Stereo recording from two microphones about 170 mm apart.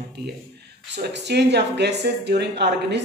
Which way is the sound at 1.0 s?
85° right.